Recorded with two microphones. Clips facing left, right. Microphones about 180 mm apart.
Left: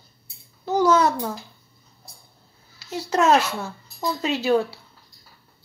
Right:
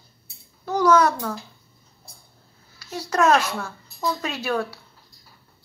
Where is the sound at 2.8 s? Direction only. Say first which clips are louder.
Left 1 dB; 20° left (ahead or behind).